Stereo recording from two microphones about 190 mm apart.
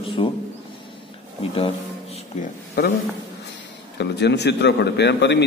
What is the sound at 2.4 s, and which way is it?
Speech, 55° left (ahead or behind).